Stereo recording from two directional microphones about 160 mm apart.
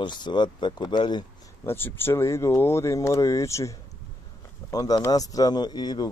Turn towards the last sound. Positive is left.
turn(degrees=25)  # may be behind; listen again after turning